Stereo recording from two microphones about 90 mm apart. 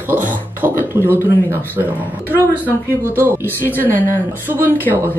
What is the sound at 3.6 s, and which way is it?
Speech, 25° left (ahead or behind).